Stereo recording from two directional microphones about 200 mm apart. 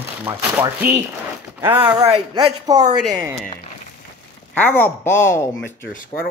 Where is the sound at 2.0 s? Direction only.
30° right (ahead or behind).